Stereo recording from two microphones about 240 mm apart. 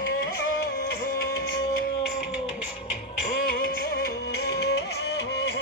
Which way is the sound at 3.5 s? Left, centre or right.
Left.